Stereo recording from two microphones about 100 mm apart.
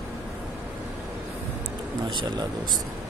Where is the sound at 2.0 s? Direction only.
50° right (ahead or behind).